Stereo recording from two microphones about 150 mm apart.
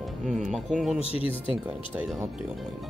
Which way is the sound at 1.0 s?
40° left (ahead or behind).